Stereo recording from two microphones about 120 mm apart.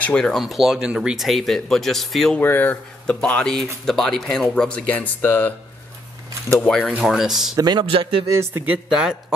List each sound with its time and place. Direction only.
0.0 s speech: 5° left (ahead or behind)
2.4 s speech: 15° left (ahead or behind)
6.5 s speech: 10° left (ahead or behind)
6.9 s speech: 5° right (ahead or behind)
7.5 s a man's voice: 35° right (ahead or behind)
7.9 s a man's voice: 50° right (ahead or behind)
8.4 s speech: 20° right (ahead or behind)
8.8 s speech: 5° right (ahead or behind)